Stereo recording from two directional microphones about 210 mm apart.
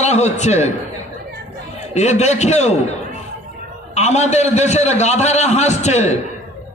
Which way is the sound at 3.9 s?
30° left (ahead or behind).